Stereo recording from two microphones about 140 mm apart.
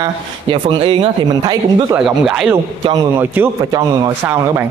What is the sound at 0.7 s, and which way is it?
Speech, 35° right (ahead or behind).